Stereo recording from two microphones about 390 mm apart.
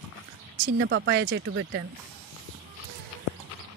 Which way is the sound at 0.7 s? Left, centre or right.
Right.